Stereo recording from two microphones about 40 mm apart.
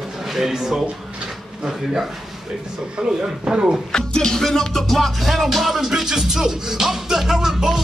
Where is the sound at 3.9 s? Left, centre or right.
Centre.